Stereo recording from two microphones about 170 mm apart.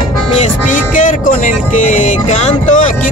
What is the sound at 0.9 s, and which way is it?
Music, 50° left (ahead or behind).